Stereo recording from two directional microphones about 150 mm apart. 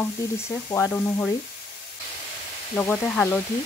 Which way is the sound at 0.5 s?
20° left (ahead or behind).